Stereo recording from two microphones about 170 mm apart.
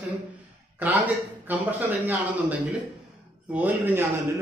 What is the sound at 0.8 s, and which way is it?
A man's voice, 10° right (ahead or behind).